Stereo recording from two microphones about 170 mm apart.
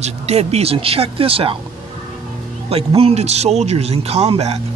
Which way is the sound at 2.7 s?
35° right (ahead or behind).